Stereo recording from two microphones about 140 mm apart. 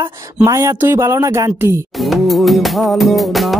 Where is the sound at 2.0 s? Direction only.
Centre (ahead or behind).